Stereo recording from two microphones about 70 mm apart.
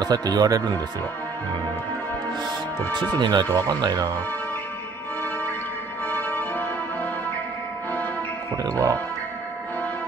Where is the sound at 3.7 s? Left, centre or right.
Right.